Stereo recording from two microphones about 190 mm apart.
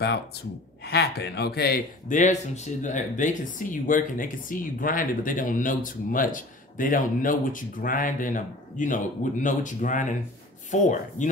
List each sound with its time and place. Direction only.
0.0 s speech: 60° left (ahead or behind); by 11.2 s 40° left (ahead or behind)